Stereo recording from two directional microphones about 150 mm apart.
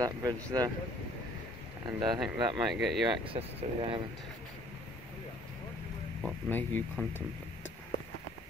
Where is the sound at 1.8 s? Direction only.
30° right (ahead or behind).